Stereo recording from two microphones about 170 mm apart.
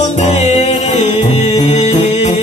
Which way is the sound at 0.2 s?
40° left (ahead or behind).